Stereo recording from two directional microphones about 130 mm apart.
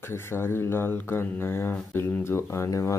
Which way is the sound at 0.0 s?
20° left (ahead or behind).